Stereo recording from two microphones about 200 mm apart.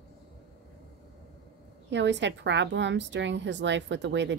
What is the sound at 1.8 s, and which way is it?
A woman's voice, 60° right (ahead or behind).